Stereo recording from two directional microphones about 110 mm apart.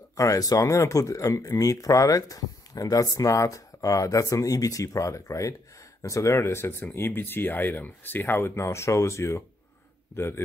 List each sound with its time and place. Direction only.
0.2 s speech: 30° left (ahead or behind)